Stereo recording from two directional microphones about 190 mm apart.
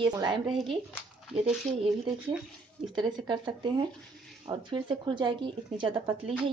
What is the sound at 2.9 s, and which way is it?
Speech, 25° right (ahead or behind).